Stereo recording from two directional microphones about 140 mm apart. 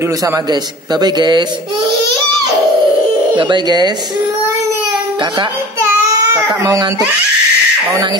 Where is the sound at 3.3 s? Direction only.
35° right (ahead or behind).